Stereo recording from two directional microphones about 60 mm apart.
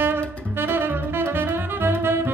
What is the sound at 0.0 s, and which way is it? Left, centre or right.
Saxophone, right.